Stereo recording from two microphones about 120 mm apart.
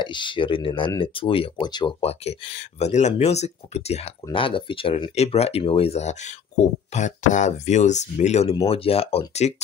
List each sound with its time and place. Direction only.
0.0 s speech: 40° left (ahead or behind)
1.7 s speech: 40° left (ahead or behind)
2.0 s speech: 60° left (ahead or behind)
6.6 s speech: 75° left (ahead or behind)
8.6 s speech: 55° left (ahead or behind)